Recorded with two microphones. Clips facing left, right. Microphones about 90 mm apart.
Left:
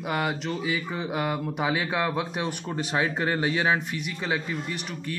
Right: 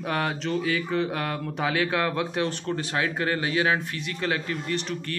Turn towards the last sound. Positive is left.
turn(degrees=10)  # may be behind; listen again after turning